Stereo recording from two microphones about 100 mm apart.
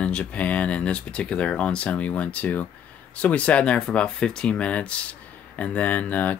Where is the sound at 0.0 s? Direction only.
10° left (ahead or behind).